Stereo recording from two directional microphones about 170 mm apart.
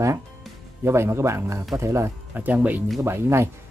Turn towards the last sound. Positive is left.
turn(degrees=-15)  # may be behind; listen again after turning